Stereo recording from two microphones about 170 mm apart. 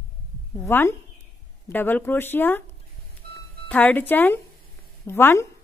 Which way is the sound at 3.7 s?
10° left (ahead or behind).